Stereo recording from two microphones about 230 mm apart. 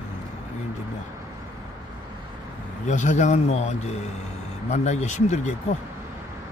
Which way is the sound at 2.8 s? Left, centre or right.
Left.